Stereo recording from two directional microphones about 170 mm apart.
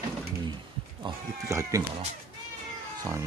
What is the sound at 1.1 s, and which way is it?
Speech, 30° right (ahead or behind).